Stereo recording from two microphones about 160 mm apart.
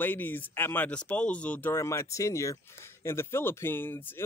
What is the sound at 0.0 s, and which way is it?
Speech, 10° left (ahead or behind).